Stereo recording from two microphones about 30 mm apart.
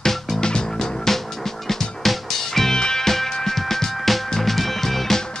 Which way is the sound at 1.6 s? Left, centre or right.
Centre.